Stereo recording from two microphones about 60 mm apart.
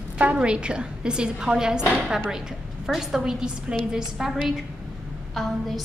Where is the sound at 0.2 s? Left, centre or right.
Centre.